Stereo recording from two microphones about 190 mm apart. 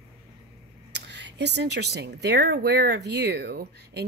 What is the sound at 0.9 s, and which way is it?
Speech, 65° right (ahead or behind).